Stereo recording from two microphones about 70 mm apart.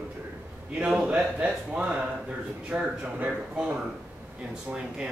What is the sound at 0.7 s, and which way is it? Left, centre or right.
Speech, centre.